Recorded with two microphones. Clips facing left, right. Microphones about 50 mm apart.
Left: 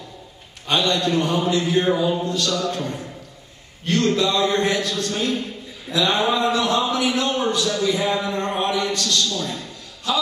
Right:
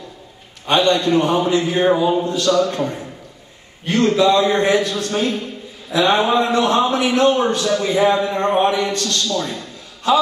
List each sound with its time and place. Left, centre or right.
0.7 s a man's voice: right; by 5.0 s centre
5.0 s speech: right
6.5 s a man's voice: right